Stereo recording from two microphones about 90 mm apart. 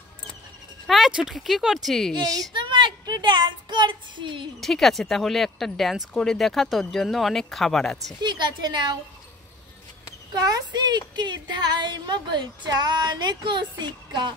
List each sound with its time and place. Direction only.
0.8 s speech: centre (ahead or behind)
2.1 s a woman's voice: 45° right (ahead or behind)
2.5 s speech: 60° right (ahead or behind)
4.6 s speech: 5° left (ahead or behind)
8.2 s a woman's voice: 55° right (ahead or behind)
10.3 s speech: 50° right (ahead or behind)